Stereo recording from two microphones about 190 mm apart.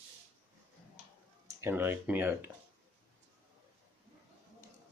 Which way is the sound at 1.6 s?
10° right (ahead or behind).